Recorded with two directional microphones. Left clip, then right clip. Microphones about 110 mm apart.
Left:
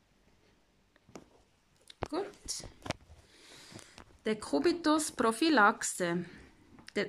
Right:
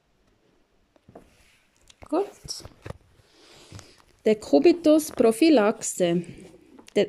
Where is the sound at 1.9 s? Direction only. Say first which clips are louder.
Right 10 dB; 20° right (ahead or behind).